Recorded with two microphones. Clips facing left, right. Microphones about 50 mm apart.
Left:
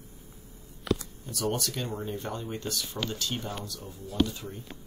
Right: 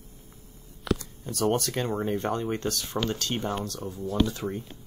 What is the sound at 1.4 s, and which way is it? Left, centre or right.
Speech, right.